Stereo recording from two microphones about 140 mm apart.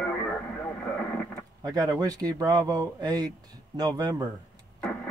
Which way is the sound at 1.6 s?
25° right (ahead or behind).